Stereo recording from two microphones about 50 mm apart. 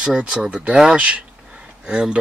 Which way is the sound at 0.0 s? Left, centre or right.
Centre.